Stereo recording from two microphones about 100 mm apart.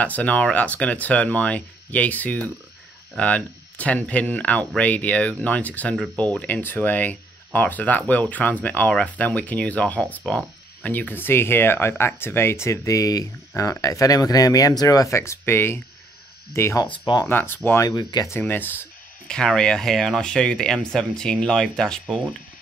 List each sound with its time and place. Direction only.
0.0 s speech: 15° left (ahead or behind)
16.8 s speech: 50° left (ahead or behind)
17.3 s speech: 20° left (ahead or behind)
17.8 s speech: 45° left (ahead or behind)
18.4 s speech: 20° left (ahead or behind)
19.2 s speech: 5° left (ahead or behind)